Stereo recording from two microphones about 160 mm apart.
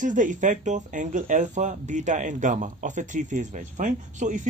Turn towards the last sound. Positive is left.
turn(degrees=-50)  # may be behind; listen again after turning